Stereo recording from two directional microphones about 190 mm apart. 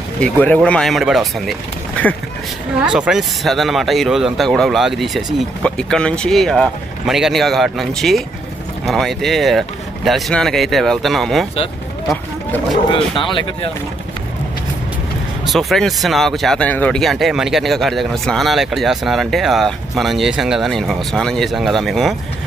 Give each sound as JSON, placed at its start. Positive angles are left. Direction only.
{"t": 0.2, "sound": "speech", "side_deg": 5}
{"t": 13.2, "sound": "speech", "side_deg": 25}
{"t": 15.4, "sound": "speech", "side_deg": 0}